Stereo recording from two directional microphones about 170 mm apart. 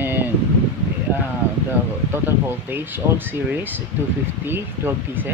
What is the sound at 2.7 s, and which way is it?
Speech, 10° right (ahead or behind).